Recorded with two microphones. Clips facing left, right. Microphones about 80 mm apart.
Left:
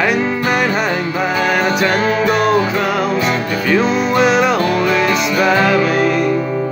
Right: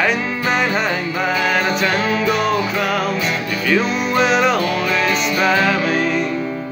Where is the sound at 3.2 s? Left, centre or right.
Left.